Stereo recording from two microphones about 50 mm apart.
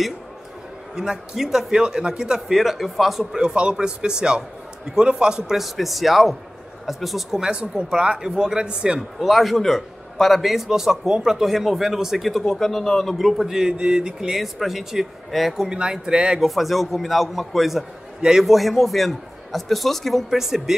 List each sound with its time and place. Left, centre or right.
0.9 s speech: centre
3.3 s speech: centre
5.5 s a man's voice: centre
9.2 s a man's voice: centre
12.3 s a man's voice: centre
14.4 s a man's voice: centre
15.7 s speech: centre
16.3 s a man's voice: centre